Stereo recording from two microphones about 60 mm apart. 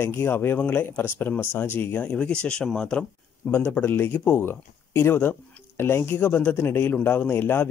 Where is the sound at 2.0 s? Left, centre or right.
Centre.